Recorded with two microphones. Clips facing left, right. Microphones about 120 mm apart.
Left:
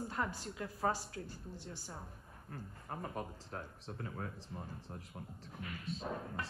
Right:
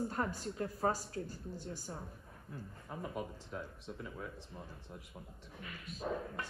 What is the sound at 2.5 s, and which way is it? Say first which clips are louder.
Speech: left 1 dB; 55° left (ahead or behind).